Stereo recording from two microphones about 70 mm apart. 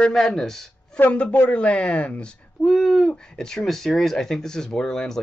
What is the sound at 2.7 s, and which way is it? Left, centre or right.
Speech, centre.